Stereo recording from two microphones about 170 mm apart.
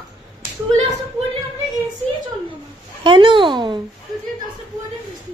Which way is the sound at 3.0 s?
30° right (ahead or behind).